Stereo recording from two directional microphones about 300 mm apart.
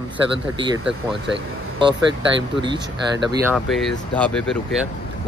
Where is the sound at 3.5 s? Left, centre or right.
Centre.